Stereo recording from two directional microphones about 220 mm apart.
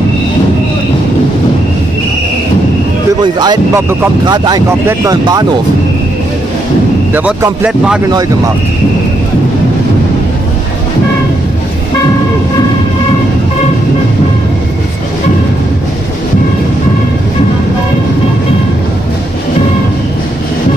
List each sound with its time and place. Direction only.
3.2 s speech: 20° right (ahead or behind)
7.2 s speech: 5° right (ahead or behind)